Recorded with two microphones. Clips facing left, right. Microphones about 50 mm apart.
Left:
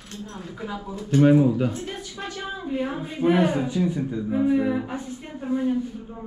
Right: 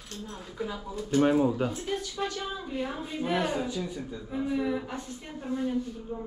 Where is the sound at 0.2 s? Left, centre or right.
Centre.